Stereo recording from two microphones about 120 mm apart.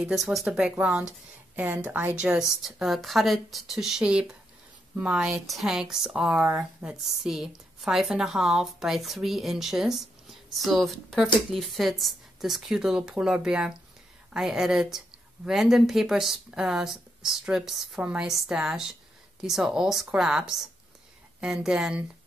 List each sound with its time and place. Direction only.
0.0 s speech: centre (ahead or behind)